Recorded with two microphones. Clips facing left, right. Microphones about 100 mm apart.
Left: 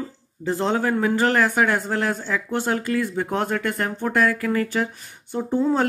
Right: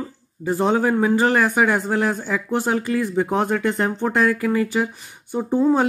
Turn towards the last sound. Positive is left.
turn(degrees=-15)  # may be behind; listen again after turning